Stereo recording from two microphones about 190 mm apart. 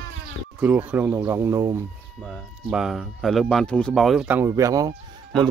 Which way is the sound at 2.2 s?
Centre (ahead or behind).